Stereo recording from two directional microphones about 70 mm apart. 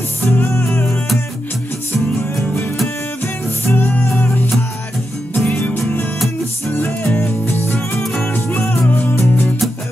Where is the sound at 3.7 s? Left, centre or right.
Left.